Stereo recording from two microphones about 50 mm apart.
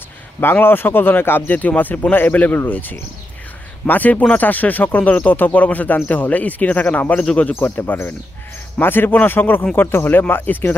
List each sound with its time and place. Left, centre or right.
0.4 s speech: left
1.5 s speech: left
7.7 s speech: left